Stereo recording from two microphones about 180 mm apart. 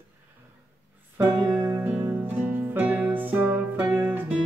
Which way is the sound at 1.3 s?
25° right (ahead or behind).